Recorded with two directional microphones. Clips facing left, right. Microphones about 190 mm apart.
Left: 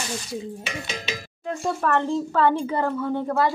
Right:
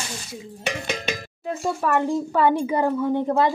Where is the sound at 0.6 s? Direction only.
50° right (ahead or behind).